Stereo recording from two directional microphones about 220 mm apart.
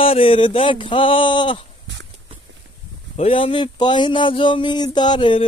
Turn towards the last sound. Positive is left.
turn(degrees=20)  # may be behind; listen again after turning